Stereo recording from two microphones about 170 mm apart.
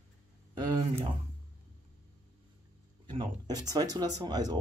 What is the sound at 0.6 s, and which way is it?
Speech, 25° right (ahead or behind).